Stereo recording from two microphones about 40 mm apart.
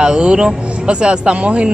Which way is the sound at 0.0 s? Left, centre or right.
Centre.